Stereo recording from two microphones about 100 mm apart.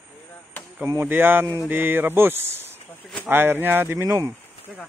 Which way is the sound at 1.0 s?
20° right (ahead or behind).